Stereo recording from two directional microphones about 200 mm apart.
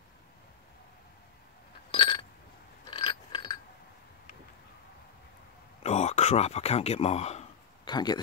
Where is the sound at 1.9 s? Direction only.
25° left (ahead or behind).